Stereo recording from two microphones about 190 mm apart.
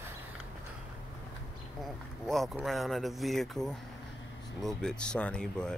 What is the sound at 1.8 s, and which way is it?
Speech, centre (ahead or behind).